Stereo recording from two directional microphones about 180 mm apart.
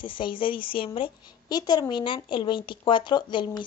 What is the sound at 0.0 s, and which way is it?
A woman's voice, 30° left (ahead or behind).